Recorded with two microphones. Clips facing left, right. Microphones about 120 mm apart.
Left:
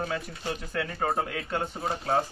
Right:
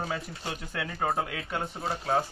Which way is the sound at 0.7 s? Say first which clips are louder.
Left 1 dB; 5° right (ahead or behind).